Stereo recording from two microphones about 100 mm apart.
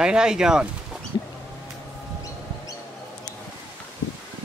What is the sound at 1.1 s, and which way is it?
Bird, 45° left (ahead or behind).